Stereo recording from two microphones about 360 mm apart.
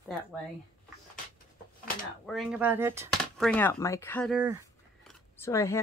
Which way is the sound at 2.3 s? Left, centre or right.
Centre.